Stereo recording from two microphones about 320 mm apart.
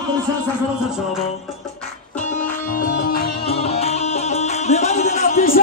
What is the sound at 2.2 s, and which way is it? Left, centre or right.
Music, left.